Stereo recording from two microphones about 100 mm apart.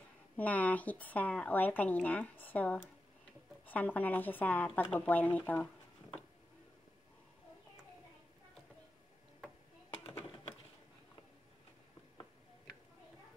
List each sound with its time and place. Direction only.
0.4 s speech: 15° left (ahead or behind)